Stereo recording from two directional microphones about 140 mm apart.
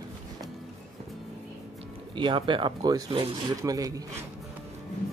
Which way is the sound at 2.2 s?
35° right (ahead or behind).